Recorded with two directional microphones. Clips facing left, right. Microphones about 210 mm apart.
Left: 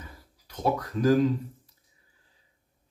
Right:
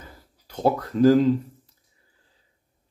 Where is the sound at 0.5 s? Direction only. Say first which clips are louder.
Right 5 dB; 30° right (ahead or behind).